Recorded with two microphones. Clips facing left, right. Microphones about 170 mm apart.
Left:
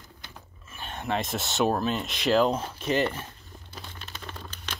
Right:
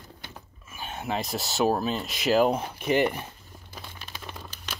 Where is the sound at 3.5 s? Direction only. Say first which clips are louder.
Left 1 dB; 10° right (ahead or behind).